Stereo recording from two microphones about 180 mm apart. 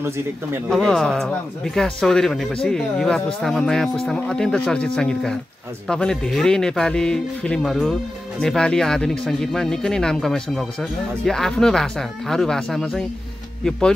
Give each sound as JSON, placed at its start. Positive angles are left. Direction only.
{"t": 0.7, "sound": "speech", "side_deg": 5}